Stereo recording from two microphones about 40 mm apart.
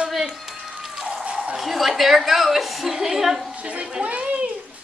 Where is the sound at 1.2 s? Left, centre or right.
Right.